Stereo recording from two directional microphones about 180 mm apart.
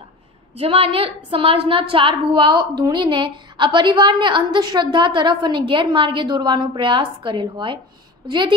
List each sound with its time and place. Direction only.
0.6 s a woman's voice: 30° right (ahead or behind)